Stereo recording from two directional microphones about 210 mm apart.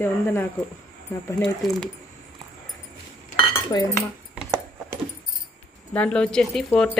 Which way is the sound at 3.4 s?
15° left (ahead or behind).